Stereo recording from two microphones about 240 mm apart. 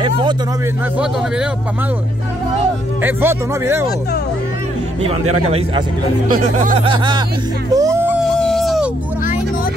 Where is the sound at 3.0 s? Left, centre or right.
Centre.